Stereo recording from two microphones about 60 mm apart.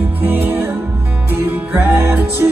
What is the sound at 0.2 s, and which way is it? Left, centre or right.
Music, right.